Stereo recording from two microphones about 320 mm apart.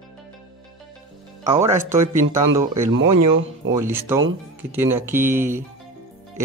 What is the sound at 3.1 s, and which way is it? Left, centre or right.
Speech, right.